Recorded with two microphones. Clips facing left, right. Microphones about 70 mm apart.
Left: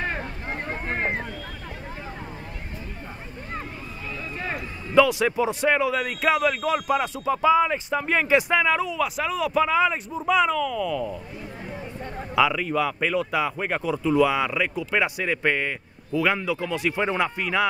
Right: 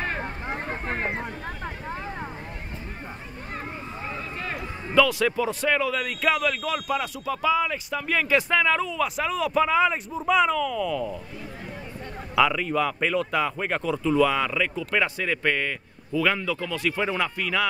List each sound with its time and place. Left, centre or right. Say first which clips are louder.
0.2 s a sound: right 1 dB; right
4.4 s a man's voice: left 1 dB; left; by 11.1 s centre
12.4 s a man's voice: even; centre; by 17.6 s left